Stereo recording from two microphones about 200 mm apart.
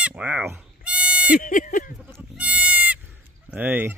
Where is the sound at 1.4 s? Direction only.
40° left (ahead or behind).